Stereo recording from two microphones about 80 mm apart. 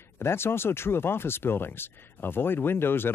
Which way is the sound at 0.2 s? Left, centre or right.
Left.